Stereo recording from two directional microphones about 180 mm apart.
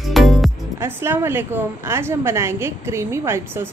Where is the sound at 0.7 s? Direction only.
15° right (ahead or behind).